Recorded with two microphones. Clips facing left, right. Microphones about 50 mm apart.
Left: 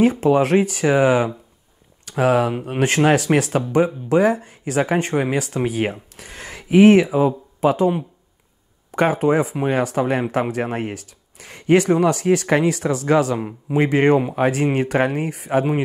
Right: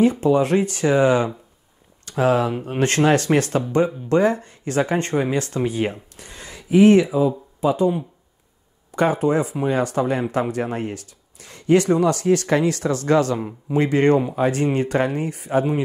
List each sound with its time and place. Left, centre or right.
0.0 s speech: left
7.1 s speech: left